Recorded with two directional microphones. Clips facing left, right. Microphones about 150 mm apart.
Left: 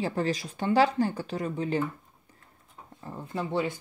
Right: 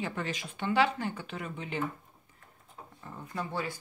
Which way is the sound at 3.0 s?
25° left (ahead or behind).